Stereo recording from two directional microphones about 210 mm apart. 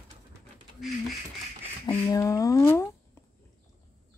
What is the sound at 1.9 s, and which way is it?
Speech, 15° left (ahead or behind).